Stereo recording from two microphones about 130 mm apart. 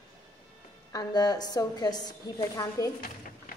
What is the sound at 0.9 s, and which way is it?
A woman's voice, 30° left (ahead or behind).